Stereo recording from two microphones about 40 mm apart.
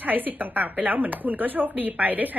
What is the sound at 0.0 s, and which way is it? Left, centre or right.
A woman's voice, right.